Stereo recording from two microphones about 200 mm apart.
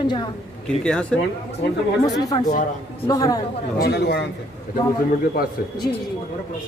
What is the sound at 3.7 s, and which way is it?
Speech, 50° left (ahead or behind).